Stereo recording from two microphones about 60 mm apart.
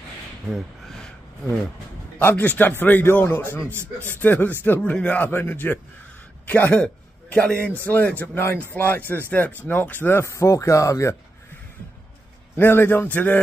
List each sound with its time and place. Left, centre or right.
0.5 s a sound: centre
2.2 s a man's voice: left
3.7 s speech: right
4.2 s a man's voice: left
10.2 s speech: left
12.5 s a man's voice: left